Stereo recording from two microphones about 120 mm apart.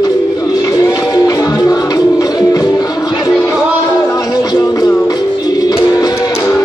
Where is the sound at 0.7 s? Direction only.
30° left (ahead or behind).